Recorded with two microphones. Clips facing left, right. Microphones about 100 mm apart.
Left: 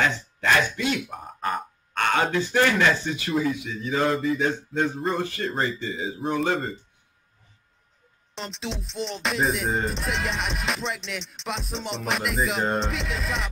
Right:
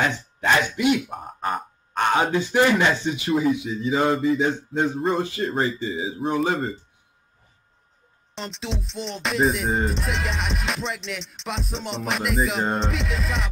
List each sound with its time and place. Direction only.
0.0 s speech: 15° right (ahead or behind)
1.1 s music: centre (ahead or behind)
2.0 s speech: 15° right (ahead or behind)
4.4 s a sound: 20° right (ahead or behind)
5.5 s music: 5° right (ahead or behind)
8.4 s music: centre (ahead or behind)